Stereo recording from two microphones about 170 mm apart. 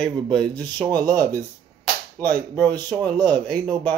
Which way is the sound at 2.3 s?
25° right (ahead or behind).